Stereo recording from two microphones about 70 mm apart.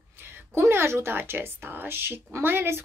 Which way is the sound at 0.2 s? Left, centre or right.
Right.